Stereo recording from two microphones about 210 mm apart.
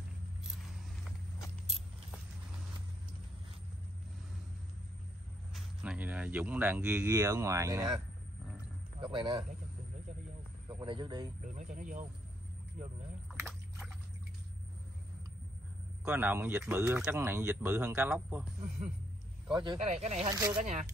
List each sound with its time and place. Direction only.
5.5 s speech: centre (ahead or behind)
9.0 s speech: 20° right (ahead or behind)
10.7 s a man's voice: 20° right (ahead or behind)
11.4 s speech: 35° right (ahead or behind)
13.3 s rowboat: 10° right (ahead or behind)
16.0 s speech: 10° right (ahead or behind)
19.5 s speech: 20° right (ahead or behind)
19.8 s speech: 30° right (ahead or behind)
20.3 s speech: 15° right (ahead or behind)